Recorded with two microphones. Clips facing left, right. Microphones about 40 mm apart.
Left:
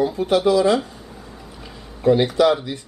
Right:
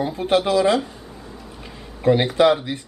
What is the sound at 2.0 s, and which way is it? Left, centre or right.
Speech, right.